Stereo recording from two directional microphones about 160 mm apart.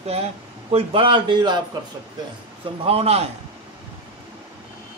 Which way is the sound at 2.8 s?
40° right (ahead or behind).